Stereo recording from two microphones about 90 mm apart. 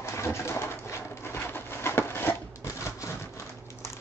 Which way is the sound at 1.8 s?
25° left (ahead or behind).